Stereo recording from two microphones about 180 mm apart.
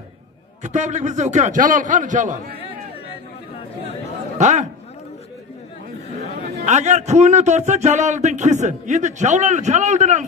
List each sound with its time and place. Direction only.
0.7 s a man's voice: 40° right (ahead or behind)
4.4 s a man's voice: 40° right (ahead or behind)
6.6 s speech: 40° right (ahead or behind)